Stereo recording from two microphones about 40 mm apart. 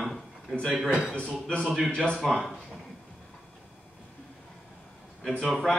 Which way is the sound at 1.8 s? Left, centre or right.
Left.